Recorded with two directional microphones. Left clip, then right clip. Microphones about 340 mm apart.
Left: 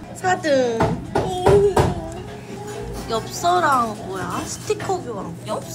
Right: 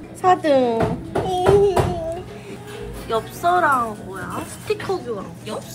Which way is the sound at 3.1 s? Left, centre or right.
Centre.